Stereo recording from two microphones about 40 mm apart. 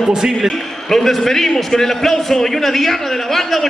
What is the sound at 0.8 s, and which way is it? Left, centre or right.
A man's voice, centre.